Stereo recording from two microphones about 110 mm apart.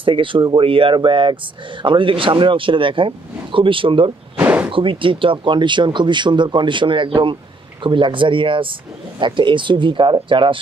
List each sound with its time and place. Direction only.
0.0 s speech: 50° right (ahead or behind)
4.4 s a sound: 15° right (ahead or behind)
4.6 s speech: 50° right (ahead or behind)